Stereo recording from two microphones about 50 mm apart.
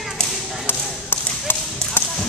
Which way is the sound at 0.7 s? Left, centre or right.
Left.